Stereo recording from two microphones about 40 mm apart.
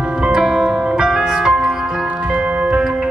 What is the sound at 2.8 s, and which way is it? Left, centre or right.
Music, centre.